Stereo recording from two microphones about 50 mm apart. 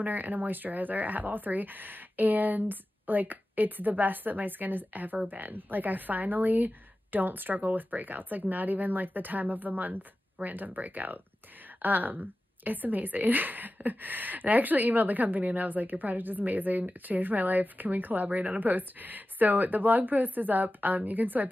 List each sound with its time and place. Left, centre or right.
0.0 s a woman's voice: right